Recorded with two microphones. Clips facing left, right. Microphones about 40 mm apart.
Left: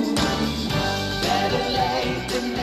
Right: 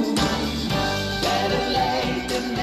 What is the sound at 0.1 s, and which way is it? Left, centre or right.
Music, centre.